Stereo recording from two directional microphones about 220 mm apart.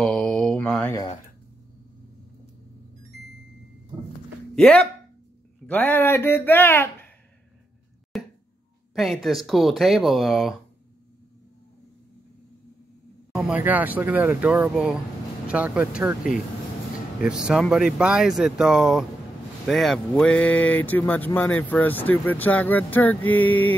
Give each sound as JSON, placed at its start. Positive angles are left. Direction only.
{"t": 0.0, "sound": "mantra", "side_deg": 0}
{"t": 4.6, "sound": "speech", "side_deg": 5}
{"t": 8.1, "sound": "a sound", "side_deg": 0}
{"t": 8.9, "sound": "speech", "side_deg": 0}
{"t": 13.3, "sound": "speech", "side_deg": -5}